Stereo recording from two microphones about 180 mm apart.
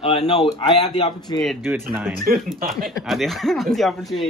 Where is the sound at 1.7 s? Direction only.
10° right (ahead or behind).